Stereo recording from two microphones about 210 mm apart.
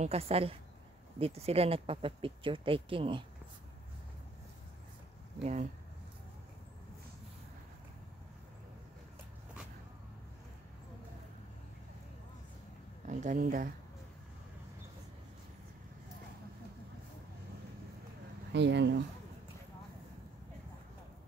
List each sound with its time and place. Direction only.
0.0 s speech: 30° right (ahead or behind)
5.4 s speech: 35° right (ahead or behind)
13.0 s speech: 35° right (ahead or behind)
18.5 s speech: 55° right (ahead or behind)